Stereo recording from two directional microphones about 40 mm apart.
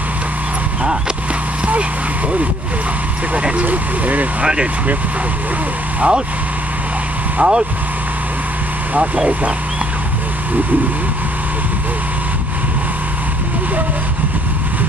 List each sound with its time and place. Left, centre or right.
3.3 s speech: right
5.9 s speech: right
7.3 s speech: right
8.9 s speech: right